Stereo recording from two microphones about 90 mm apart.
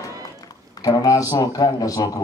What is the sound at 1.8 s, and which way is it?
Speech, 40° left (ahead or behind).